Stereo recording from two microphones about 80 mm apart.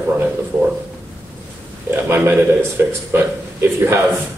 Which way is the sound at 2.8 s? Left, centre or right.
Right.